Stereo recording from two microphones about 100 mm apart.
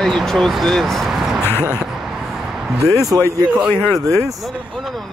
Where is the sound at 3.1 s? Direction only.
25° right (ahead or behind).